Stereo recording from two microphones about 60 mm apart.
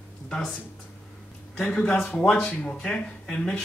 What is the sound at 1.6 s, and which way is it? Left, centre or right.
Speech, left.